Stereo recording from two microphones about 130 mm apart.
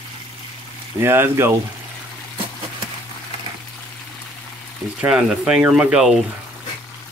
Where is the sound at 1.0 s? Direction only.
20° right (ahead or behind).